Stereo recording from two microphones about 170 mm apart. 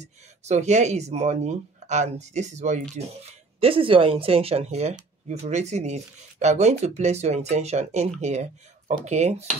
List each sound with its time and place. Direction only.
0.0 s speech: 40° right (ahead or behind)
3.3 s speech: 35° right (ahead or behind)